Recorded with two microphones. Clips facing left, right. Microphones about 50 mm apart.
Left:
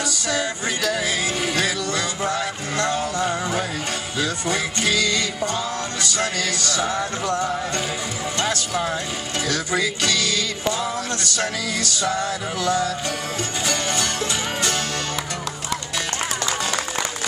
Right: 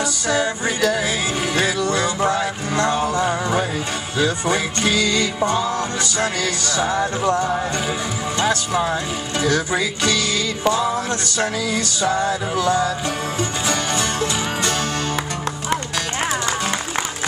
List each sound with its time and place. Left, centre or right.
0.3 s music: right
8.4 s speech: right
9.4 s music: right